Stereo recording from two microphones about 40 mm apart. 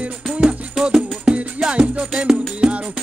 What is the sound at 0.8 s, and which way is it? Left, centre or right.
Music, right.